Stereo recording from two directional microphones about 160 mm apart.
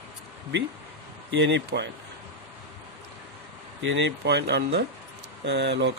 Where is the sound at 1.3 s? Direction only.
90° right.